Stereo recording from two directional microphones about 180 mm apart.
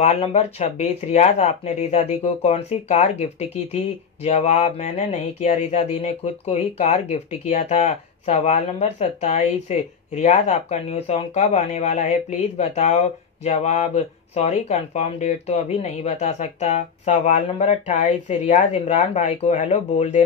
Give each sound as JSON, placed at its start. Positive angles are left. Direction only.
{"t": 0.0, "sound": "speech", "side_deg": 35}